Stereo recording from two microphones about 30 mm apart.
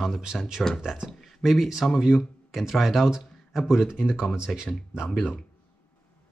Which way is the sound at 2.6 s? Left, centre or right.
Centre.